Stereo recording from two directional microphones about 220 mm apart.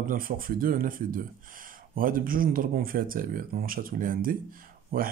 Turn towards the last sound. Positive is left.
turn(degrees=-40)  # may be behind; listen again after turning